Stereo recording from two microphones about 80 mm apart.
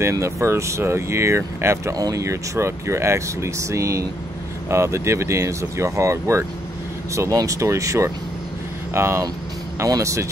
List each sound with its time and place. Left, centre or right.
0.0 s speech: right
2.0 s speech: right